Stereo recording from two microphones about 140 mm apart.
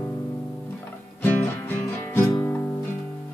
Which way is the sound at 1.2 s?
15° left (ahead or behind).